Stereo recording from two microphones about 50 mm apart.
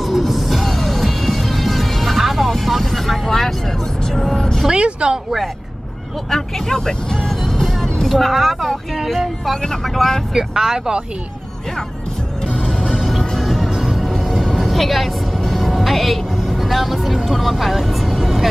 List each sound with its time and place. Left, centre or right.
0.0 s music: centre
4.1 s vehicle: centre
4.6 s a sound: centre
5.1 s speech: centre
6.3 s speech: centre
9.9 s speech: centre
10.3 s speech: centre
12.5 s music: right
13.2 s music: centre